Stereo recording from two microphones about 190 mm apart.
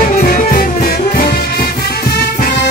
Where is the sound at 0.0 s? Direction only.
50° left (ahead or behind).